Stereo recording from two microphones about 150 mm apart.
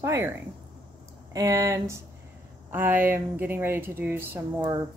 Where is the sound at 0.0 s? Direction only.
15° right (ahead or behind).